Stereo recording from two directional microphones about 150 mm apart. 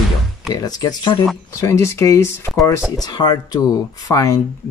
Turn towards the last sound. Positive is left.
turn(degrees=20)  # may be behind; listen again after turning